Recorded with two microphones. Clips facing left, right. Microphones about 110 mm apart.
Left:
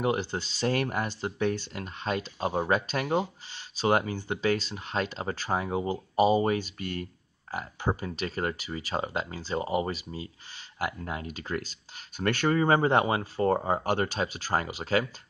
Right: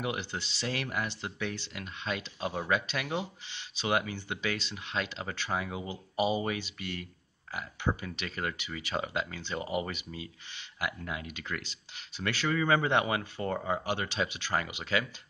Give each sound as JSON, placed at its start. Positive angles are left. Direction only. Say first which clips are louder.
{"t": 0.0, "sound": "speech", "louder": "left 7 dB", "side_deg": 40}
{"t": 12.2, "sound": "speech", "louder": "left 5 dB", "side_deg": 50}